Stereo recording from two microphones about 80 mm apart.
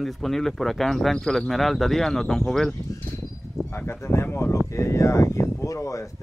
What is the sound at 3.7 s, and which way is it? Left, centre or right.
Speech, left.